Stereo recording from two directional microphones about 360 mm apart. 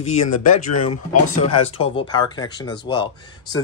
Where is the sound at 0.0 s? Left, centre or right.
Centre.